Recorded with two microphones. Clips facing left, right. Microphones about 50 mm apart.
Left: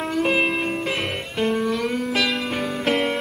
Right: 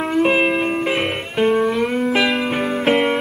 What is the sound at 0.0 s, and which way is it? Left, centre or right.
Music, centre.